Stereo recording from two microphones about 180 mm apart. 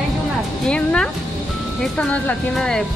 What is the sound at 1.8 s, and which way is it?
Speech, 5° left (ahead or behind).